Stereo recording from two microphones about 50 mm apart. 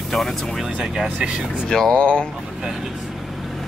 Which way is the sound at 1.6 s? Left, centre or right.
Centre.